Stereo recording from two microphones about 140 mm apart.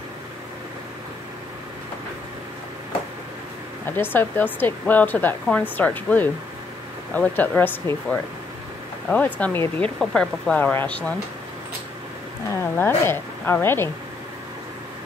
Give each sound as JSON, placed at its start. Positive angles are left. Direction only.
{"t": 3.9, "sound": "speech", "side_deg": 15}
{"t": 12.7, "sound": "speech", "side_deg": 15}